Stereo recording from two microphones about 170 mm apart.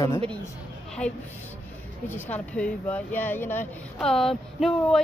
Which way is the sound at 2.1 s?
10° left (ahead or behind).